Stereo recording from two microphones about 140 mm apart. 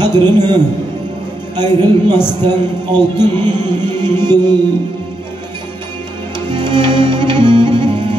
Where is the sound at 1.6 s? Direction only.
15° left (ahead or behind).